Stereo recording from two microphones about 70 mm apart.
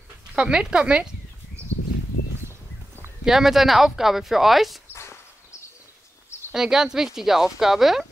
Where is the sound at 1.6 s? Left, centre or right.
Centre.